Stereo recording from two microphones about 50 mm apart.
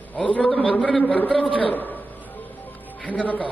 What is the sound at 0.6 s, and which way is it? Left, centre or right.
A man's voice, left.